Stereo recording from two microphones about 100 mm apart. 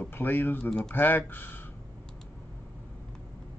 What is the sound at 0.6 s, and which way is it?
Speech, 5° left (ahead or behind).